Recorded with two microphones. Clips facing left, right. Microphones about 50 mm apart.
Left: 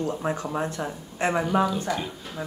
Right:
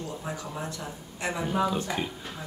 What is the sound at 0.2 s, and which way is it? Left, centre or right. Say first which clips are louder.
Speech: left 8 dB; left.